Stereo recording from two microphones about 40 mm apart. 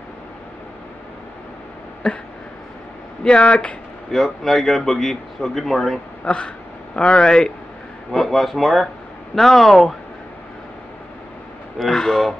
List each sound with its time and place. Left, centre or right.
2.0 s speech: left
3.3 s speech: left
4.1 s a man's voice: centre
6.2 s speech: left
8.1 s a man's voice: centre
11.8 s speech: centre